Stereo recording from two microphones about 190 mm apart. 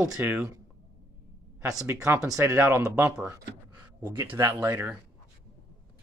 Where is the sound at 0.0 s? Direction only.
10° right (ahead or behind).